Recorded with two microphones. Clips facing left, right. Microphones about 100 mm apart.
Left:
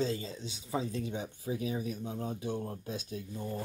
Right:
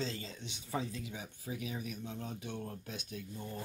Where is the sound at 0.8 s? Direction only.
30° left (ahead or behind).